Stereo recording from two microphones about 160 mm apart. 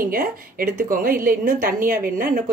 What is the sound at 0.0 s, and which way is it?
A woman's voice, 65° right (ahead or behind).